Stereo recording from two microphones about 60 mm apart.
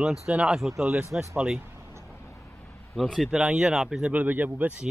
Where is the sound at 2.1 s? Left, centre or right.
Left.